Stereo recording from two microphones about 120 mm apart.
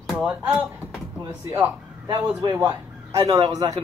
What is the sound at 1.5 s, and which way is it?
A man's voice, 25° right (ahead or behind).